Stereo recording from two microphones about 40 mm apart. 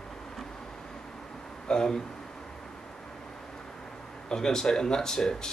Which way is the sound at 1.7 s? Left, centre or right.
Centre.